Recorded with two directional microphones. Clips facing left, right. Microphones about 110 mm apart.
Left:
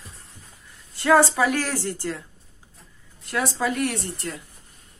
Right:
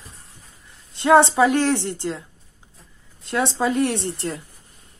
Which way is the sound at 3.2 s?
25° right (ahead or behind).